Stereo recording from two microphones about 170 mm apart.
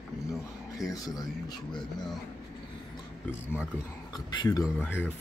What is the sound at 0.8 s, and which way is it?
Speech, 20° left (ahead or behind).